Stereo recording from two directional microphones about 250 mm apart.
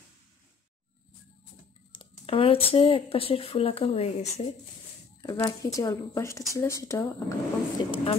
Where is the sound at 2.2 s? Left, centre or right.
Left.